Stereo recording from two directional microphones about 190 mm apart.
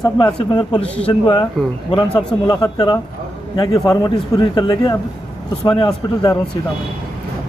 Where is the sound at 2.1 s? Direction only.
5° left (ahead or behind).